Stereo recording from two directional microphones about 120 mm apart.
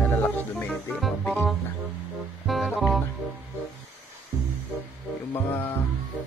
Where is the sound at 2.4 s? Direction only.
Centre (ahead or behind).